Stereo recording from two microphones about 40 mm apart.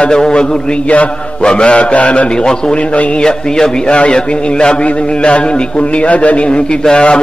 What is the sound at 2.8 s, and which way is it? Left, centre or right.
Speech, left.